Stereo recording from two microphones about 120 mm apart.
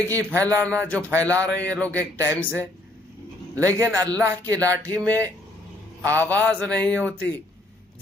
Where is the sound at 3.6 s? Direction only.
25° right (ahead or behind).